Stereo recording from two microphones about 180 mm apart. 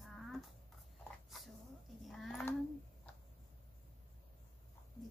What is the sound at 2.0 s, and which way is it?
Speech, 5° left (ahead or behind).